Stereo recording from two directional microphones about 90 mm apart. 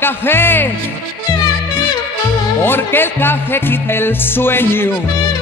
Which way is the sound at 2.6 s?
25° left (ahead or behind).